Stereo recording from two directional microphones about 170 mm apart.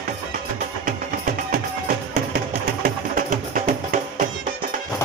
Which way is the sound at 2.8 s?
55° right (ahead or behind).